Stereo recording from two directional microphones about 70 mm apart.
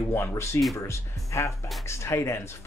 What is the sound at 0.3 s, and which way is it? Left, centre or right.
Speech, left.